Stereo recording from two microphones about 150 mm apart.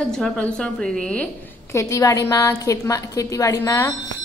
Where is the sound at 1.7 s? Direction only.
20° left (ahead or behind).